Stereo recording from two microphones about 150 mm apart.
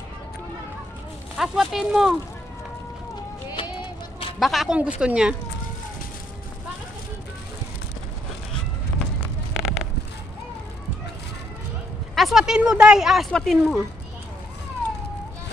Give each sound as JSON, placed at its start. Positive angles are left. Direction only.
{"t": 1.3, "sound": "speech", "side_deg": 0}
{"t": 3.4, "sound": "music", "side_deg": 25}
{"t": 4.4, "sound": "speech", "side_deg": 0}
{"t": 9.5, "sound": "a sound", "side_deg": 0}
{"t": 12.2, "sound": "speech", "side_deg": 0}